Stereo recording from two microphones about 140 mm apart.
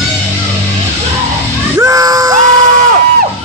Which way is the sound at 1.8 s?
25° right (ahead or behind).